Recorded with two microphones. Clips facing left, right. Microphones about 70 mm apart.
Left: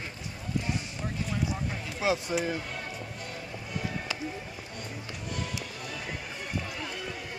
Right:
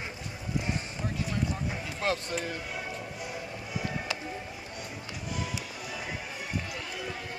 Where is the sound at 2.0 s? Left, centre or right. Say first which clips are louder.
Left 3 dB; centre.